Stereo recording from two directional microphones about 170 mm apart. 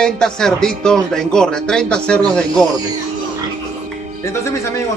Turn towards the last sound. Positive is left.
turn(degrees=15)  # may be behind; listen again after turning